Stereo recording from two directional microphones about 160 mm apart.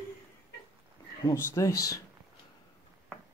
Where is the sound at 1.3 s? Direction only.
20° left (ahead or behind).